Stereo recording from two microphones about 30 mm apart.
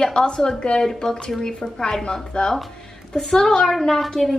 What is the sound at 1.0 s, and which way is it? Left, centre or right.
Speech, centre.